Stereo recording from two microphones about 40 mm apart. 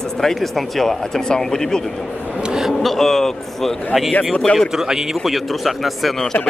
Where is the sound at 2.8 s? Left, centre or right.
Centre.